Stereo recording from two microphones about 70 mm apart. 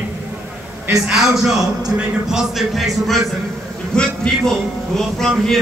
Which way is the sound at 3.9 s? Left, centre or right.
Centre.